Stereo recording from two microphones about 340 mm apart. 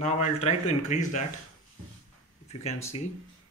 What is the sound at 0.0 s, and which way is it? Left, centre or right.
Speech, centre.